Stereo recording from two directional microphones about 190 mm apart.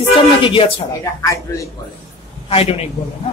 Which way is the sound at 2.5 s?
30° left (ahead or behind).